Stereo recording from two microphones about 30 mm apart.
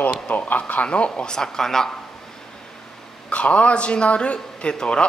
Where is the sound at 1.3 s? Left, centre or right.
Left.